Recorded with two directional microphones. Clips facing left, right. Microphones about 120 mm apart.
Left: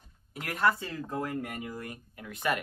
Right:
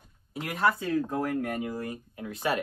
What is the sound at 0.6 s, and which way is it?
Speech, centre (ahead or behind).